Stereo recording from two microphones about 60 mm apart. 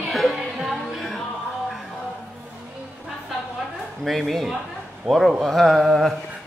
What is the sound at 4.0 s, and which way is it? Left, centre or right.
Speech, centre.